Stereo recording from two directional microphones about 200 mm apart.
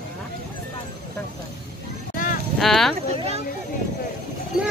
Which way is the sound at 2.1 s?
45° left (ahead or behind).